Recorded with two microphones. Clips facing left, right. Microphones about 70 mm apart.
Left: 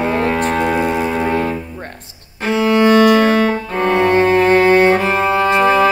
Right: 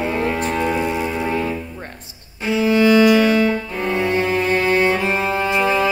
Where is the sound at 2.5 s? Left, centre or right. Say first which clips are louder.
Left 2 dB; left.